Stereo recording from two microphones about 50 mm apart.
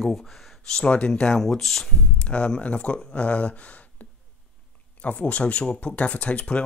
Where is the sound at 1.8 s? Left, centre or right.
Left.